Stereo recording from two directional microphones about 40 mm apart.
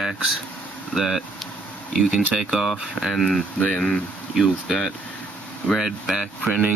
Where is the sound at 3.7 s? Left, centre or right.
Centre.